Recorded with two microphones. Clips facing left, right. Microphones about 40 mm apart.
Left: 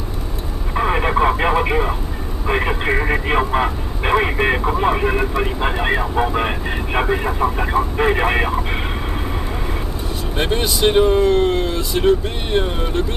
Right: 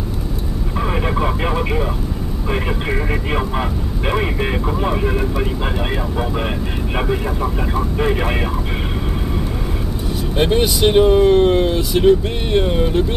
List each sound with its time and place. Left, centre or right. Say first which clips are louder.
0.7 s vehicle: left 4 dB; left
2.5 s speech: left 3 dB; left
10.3 s speech: right 4 dB; centre